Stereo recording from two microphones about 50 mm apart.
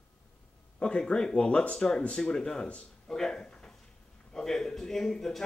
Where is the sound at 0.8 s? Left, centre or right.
Centre.